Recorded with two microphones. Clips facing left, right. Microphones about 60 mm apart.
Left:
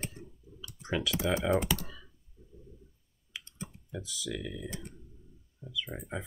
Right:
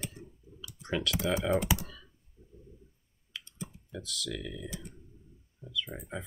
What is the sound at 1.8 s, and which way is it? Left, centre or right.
Computer keyboard, centre.